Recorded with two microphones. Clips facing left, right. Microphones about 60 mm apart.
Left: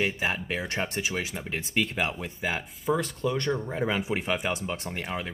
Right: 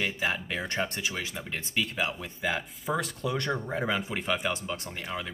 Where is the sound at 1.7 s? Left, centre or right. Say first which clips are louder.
Left 2 dB; left.